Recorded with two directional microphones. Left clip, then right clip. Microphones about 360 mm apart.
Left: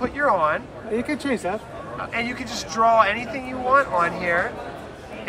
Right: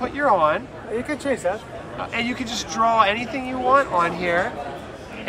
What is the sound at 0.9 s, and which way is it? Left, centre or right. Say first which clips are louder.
Speech: even; centre.